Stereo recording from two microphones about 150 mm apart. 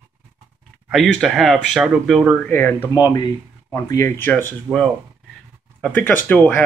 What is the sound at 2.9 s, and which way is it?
Speech, 25° left (ahead or behind).